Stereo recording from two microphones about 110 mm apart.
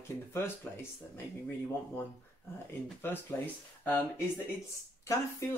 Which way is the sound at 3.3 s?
20° left (ahead or behind).